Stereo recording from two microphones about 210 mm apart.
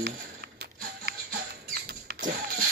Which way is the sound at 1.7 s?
50° right (ahead or behind).